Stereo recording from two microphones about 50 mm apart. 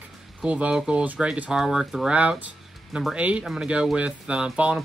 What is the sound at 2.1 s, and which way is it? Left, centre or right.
Speech, right.